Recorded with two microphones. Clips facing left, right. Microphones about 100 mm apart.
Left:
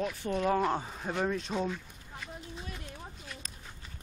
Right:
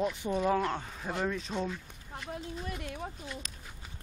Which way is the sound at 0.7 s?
10° left (ahead or behind).